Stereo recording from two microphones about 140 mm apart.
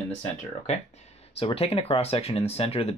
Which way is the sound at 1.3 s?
45° left (ahead or behind).